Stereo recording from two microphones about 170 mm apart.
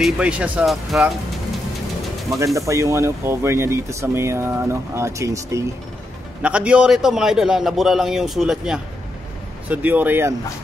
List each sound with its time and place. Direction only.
0.0 s speech: 5° right (ahead or behind)
2.3 s speech: 20° right (ahead or behind)
6.4 s a man's voice: 5° right (ahead or behind)